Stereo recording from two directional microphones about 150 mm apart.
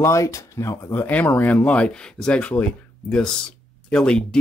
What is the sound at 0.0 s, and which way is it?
Speech, 20° left (ahead or behind).